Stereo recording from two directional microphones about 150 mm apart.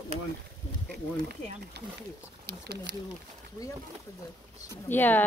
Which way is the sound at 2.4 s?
90° right.